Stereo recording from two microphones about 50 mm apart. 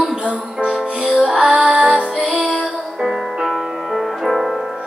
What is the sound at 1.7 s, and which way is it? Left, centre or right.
Music, right.